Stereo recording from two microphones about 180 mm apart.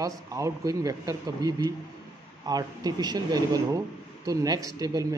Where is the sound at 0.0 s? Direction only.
20° right (ahead or behind).